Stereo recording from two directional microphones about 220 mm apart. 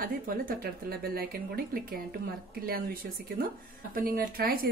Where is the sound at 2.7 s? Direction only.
45° right (ahead or behind).